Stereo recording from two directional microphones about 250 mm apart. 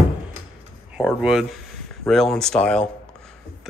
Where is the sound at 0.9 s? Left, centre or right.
Centre.